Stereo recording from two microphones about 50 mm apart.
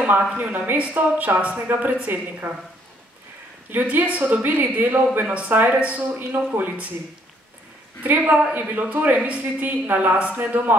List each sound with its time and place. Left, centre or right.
0.0 s a woman's voice: right
3.9 s a woman's voice: right
6.1 s speech: right
8.0 s speech: right